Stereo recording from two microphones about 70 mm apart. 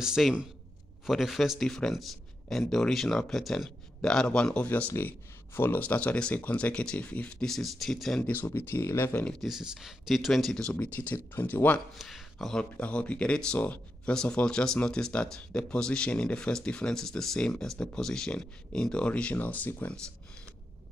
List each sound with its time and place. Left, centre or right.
0.0 s speech: centre
4.9 s speech: left
7.4 s speech: centre
8.2 s speech: left
9.2 s speech: centre
9.5 s speech: centre; by 11.8 s left
12.0 s speech: centre
12.7 s speech: centre